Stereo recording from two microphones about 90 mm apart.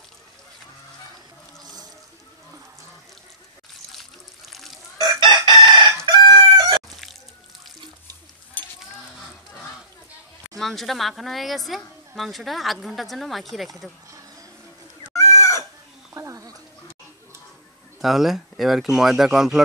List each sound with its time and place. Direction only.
3.9 s water: centre (ahead or behind)
5.2 s chicken: 55° right (ahead or behind)
10.6 s speech: 5° left (ahead or behind)
15.1 s chicken: 35° left (ahead or behind)
16.2 s a sound: 35° right (ahead or behind)
18.0 s speech: 5° right (ahead or behind)